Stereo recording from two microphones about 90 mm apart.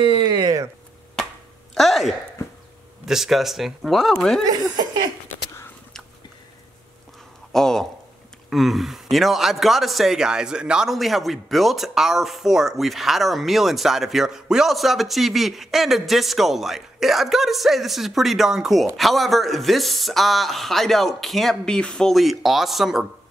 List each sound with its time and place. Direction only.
0.0 s a sound: 65° right (ahead or behind)
1.8 s a man's voice: centre (ahead or behind)
4.5 s speech: 50° right (ahead or behind)
7.5 s a man's voice: 5° left (ahead or behind)